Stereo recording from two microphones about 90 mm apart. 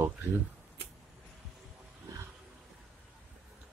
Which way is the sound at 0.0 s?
25° right (ahead or behind).